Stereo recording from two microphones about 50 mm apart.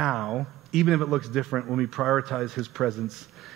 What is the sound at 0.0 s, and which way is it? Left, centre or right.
A man's voice, centre.